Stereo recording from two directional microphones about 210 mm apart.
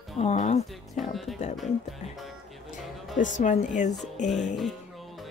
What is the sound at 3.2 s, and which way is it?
Speech, 35° left (ahead or behind).